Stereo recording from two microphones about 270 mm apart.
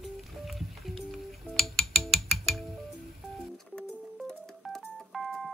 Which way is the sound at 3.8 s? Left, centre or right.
Centre.